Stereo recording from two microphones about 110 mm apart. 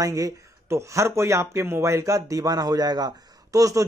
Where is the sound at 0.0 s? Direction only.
30° right (ahead or behind).